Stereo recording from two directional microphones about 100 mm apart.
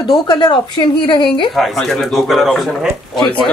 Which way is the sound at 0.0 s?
50° left (ahead or behind).